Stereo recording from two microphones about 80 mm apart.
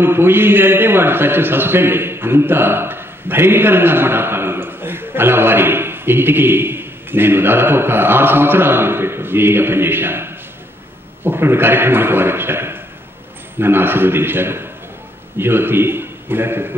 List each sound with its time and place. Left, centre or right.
0.0 s a man's voice: right